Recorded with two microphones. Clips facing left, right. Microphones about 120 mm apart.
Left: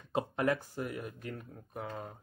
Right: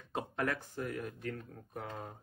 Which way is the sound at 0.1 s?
15° left (ahead or behind).